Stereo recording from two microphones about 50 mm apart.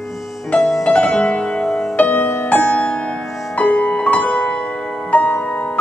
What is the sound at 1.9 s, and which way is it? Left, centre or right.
Music, left.